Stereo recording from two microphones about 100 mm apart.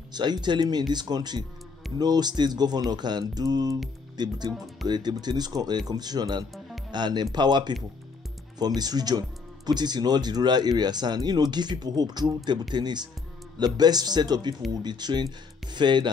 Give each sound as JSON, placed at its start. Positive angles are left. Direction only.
{"t": 0.1, "sound": "speech", "side_deg": -45}